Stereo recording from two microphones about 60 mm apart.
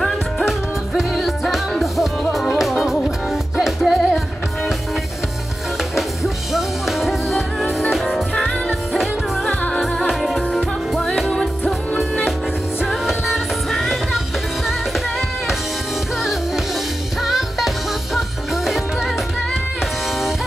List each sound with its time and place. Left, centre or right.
0.5 s music: centre
5.9 s music: centre
9.5 s music: left
9.8 s music: centre
11.0 s music: centre
12.0 s music: centre